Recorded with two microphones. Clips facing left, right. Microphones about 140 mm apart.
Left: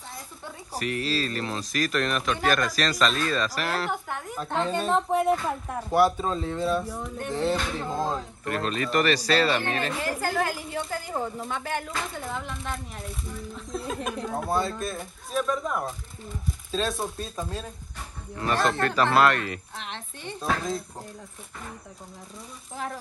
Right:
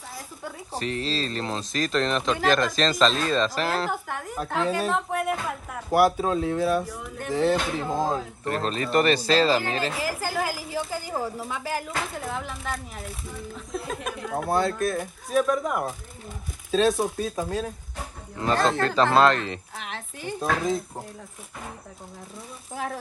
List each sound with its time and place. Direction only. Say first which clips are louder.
0.7 s speech: even; 25° right (ahead or behind)
3.9 s a woman's voice: right 1 dB; centre (ahead or behind)
8.5 s speech: right 1 dB; 35° right (ahead or behind)
9.9 s a woman's voice: left 1 dB; centre (ahead or behind)
18.4 s speech: right 2 dB; 25° right (ahead or behind)
19.8 s a woman's voice: right 2 dB; 5° right (ahead or behind)